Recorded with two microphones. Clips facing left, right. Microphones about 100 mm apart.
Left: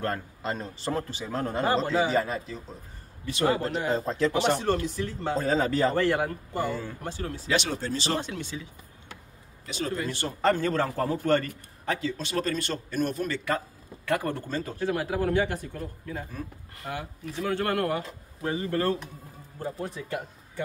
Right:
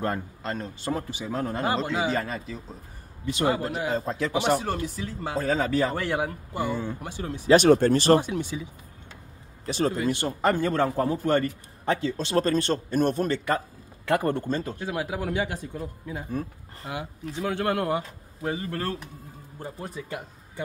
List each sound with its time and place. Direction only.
0.4 s a man's voice: centre (ahead or behind); by 7.4 s 15° right (ahead or behind)
7.4 s speech: 50° right (ahead or behind)
8.2 s a man's voice: 15° right (ahead or behind)
9.7 s a man's voice: 35° right (ahead or behind)
9.9 s a man's voice: 15° right (ahead or behind)
11.8 s a man's voice: 30° right (ahead or behind)
14.0 s speech: 25° right (ahead or behind)
14.8 s a man's voice: 15° right (ahead or behind)
16.3 s a man's voice: 35° right (ahead or behind)
16.9 s a man's voice: 15° right (ahead or behind)
18.5 s speech: centre (ahead or behind)